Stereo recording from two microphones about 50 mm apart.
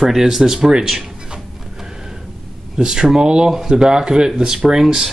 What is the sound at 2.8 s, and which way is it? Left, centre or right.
Speech, centre.